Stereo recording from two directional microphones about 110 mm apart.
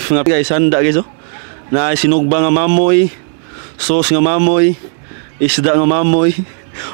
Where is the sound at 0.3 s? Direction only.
15° right (ahead or behind).